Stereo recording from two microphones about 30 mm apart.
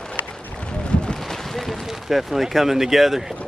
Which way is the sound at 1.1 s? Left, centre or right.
Centre.